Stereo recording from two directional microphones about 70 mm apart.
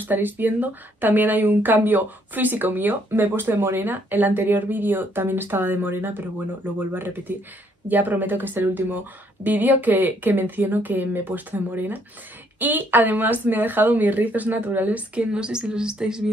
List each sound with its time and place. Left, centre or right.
0.0 s speech: right; by 16.3 s centre